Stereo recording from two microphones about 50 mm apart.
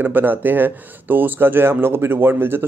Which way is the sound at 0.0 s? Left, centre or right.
Right.